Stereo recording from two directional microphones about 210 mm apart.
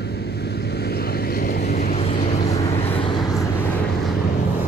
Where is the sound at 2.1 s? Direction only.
35° left (ahead or behind).